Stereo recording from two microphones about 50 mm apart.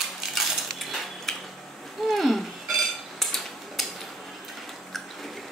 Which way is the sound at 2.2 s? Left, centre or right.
Centre.